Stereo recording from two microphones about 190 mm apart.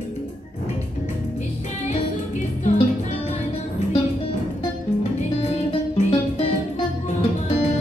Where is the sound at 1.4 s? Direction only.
40° left (ahead or behind).